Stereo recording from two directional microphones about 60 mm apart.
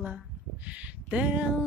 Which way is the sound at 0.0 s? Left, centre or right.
Right.